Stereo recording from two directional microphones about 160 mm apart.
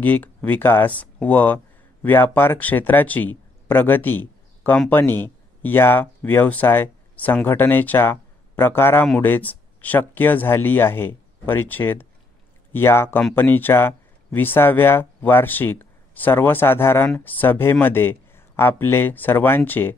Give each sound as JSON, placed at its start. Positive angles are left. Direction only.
{"t": 0.0, "sound": "speech", "side_deg": 10}